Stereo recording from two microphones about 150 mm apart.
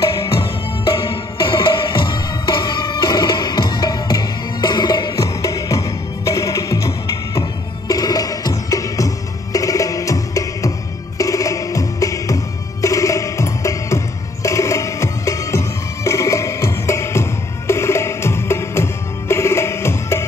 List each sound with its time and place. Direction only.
0.9 s music: 35° left (ahead or behind)
7.9 s music: 25° left (ahead or behind)